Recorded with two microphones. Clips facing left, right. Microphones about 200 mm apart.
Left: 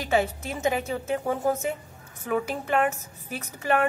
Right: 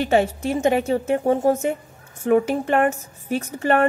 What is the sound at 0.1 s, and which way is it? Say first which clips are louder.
Speech: right 3 dB; 30° right (ahead or behind).